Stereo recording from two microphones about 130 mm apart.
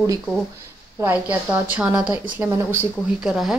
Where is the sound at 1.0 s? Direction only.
15° right (ahead or behind).